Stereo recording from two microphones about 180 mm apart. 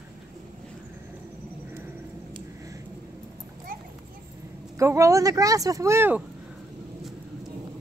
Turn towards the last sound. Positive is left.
turn(degrees=-10)  # may be behind; listen again after turning